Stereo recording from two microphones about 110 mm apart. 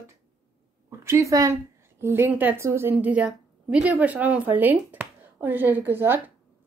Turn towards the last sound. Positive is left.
turn(degrees=-20)  # may be behind; listen again after turning